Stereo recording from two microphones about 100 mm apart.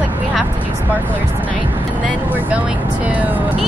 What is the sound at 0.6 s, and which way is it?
Vehicle, 20° right (ahead or behind).